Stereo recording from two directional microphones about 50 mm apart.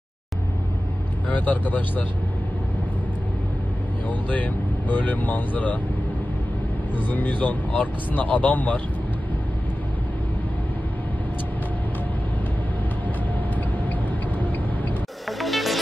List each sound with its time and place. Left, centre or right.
1.3 s speech: left
4.1 s speech: left
7.0 s speech: left
15.2 s music: centre